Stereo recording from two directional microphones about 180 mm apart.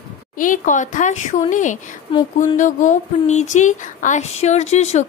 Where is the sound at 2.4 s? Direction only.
45° left (ahead or behind).